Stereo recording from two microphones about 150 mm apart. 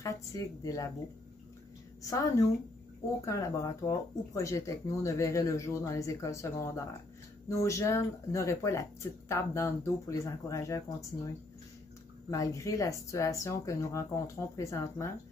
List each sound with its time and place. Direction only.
0.0 s speech: 25° left (ahead or behind)
2.0 s speech: 20° left (ahead or behind)
12.3 s speech: 20° left (ahead or behind)